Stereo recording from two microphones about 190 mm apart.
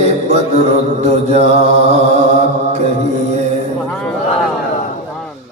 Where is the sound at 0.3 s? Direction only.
35° right (ahead or behind).